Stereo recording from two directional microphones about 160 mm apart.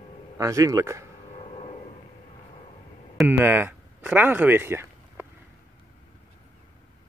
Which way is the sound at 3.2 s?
10° right (ahead or behind).